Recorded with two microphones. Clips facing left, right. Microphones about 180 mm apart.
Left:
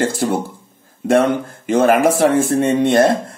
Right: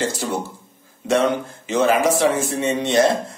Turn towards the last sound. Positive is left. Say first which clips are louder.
# left 4 dB
turn(degrees=55)  # may be behind; listen again after turning